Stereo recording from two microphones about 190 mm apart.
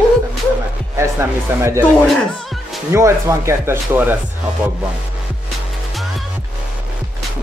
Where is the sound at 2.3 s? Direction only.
Centre (ahead or behind).